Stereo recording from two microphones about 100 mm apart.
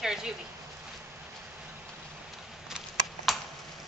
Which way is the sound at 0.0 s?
5° right (ahead or behind).